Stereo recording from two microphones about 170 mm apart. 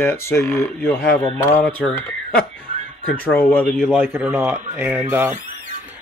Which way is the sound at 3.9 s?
10° right (ahead or behind).